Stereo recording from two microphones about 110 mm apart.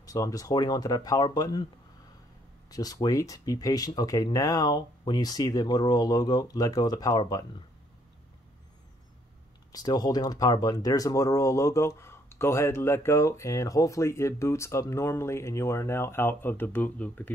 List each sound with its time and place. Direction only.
0.0 s speech: 30° left (ahead or behind)
2.7 s speech: 35° left (ahead or behind)
9.7 s speech: 35° left (ahead or behind); by 17.3 s 15° left (ahead or behind)